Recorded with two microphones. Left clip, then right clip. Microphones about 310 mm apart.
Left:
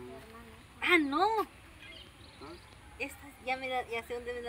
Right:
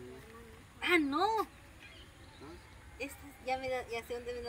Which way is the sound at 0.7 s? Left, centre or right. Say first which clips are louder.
Left 3 dB; centre.